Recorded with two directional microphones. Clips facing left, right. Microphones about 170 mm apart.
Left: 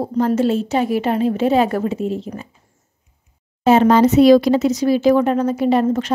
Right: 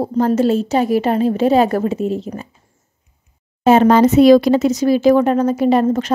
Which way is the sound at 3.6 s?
50° right (ahead or behind).